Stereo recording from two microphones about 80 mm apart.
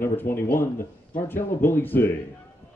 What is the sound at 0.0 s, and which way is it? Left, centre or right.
Speech, left.